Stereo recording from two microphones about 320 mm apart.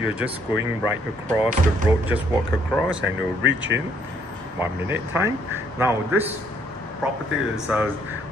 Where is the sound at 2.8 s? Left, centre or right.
Right.